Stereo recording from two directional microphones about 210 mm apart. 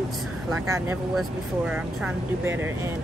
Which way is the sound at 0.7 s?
15° right (ahead or behind).